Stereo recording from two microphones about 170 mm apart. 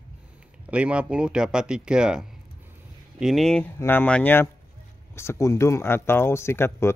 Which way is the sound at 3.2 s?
Centre (ahead or behind).